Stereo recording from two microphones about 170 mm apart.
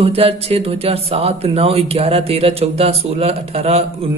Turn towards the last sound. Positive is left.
turn(degrees=-35)  # may be behind; listen again after turning